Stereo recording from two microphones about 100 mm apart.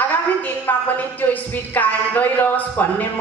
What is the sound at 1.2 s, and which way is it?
Speech, 15° left (ahead or behind).